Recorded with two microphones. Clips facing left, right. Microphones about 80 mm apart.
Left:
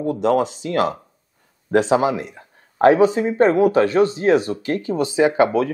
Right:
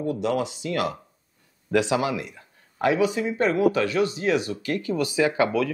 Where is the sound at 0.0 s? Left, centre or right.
Left.